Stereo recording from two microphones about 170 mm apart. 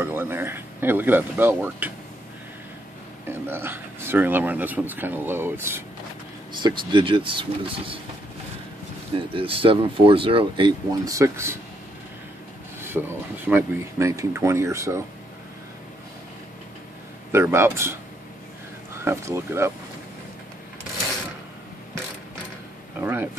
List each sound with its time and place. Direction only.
0.0 s speech: 15° right (ahead or behind)
3.3 s speech: 15° right (ahead or behind)
6.6 s speech: 30° right (ahead or behind)
9.1 s speech: 30° right (ahead or behind); by 11.5 s 15° right (ahead or behind)
13.0 s speech: 10° right (ahead or behind)
17.3 s speech: 15° right (ahead or behind)
19.0 s speech: 15° right (ahead or behind)
22.9 s speech: 10° right (ahead or behind)